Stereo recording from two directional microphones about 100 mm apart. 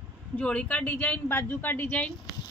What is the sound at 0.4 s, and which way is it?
Speech, 15° left (ahead or behind).